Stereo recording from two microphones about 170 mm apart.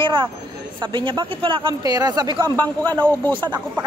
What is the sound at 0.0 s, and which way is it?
Speech, 30° right (ahead or behind).